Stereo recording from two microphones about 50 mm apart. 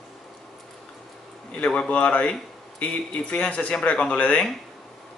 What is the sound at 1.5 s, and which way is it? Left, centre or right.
Speech, centre.